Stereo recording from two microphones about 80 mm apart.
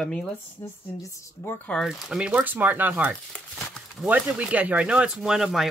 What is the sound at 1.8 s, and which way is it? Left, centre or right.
Speech, centre.